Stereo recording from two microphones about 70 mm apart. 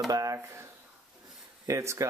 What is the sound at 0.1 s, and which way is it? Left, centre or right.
Speech, right.